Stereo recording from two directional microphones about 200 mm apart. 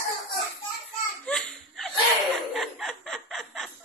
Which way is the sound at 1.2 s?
5° left (ahead or behind).